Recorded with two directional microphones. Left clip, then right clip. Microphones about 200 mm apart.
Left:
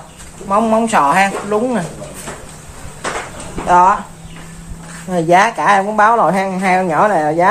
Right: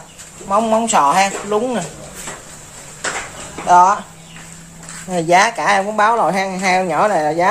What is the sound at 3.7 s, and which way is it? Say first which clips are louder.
Speech: even; centre (ahead or behind).